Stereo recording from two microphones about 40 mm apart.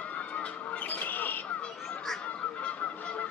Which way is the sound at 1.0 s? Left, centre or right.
Left.